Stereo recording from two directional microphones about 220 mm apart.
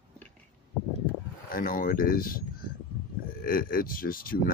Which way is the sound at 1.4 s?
40° left (ahead or behind).